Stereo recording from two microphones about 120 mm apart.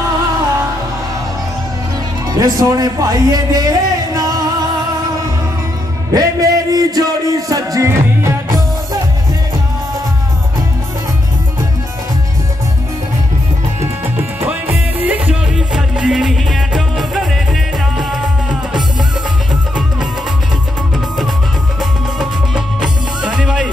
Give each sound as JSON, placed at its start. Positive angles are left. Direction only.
{"t": 2.3, "sound": "a man's voice", "side_deg": -30}
{"t": 6.1, "sound": "speech", "side_deg": -30}
{"t": 14.4, "sound": "music", "side_deg": -20}
{"t": 22.2, "sound": "music", "side_deg": -5}